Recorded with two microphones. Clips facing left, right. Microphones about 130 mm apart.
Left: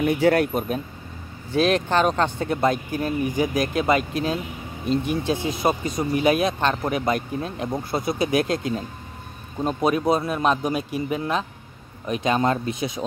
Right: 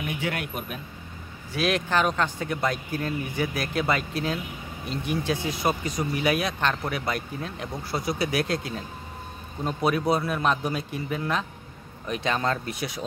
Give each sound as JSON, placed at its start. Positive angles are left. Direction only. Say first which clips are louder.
{"t": 0.0, "sound": "speech", "louder": "left 12 dB", "side_deg": 40}